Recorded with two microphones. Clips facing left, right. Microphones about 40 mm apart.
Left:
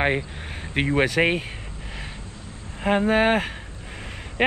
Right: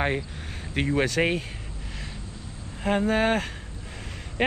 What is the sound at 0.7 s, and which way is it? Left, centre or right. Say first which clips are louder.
Speech: left 3 dB; left.